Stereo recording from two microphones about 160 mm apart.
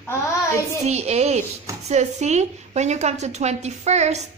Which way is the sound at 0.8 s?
45° right (ahead or behind).